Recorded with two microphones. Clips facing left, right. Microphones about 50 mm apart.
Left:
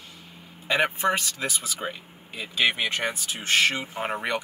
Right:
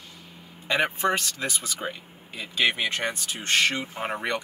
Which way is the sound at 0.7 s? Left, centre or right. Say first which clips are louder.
Left 1 dB; centre.